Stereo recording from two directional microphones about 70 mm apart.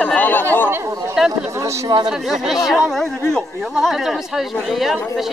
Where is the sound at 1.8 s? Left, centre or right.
Right.